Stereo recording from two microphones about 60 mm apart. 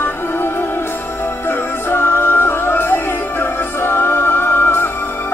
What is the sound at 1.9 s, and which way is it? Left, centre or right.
Music, left.